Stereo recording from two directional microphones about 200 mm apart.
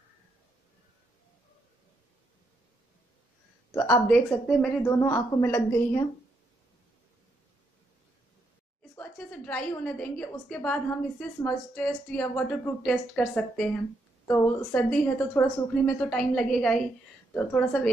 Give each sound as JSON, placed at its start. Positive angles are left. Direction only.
{"t": 3.7, "sound": "a woman's voice", "side_deg": 10}
{"t": 4.9, "sound": "a woman's voice", "side_deg": 15}
{"t": 8.9, "sound": "a woman's voice", "side_deg": 5}